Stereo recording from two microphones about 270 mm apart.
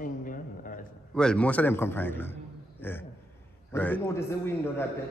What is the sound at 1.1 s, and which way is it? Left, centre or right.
A man's voice, centre.